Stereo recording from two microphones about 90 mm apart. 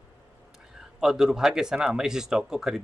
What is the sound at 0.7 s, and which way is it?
Speech, 5° right (ahead or behind).